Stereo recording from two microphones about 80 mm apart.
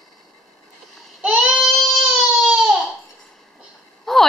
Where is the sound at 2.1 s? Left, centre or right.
Centre.